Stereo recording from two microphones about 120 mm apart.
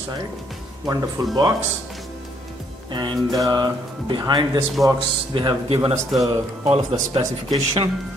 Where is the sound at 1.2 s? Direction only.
35° right (ahead or behind).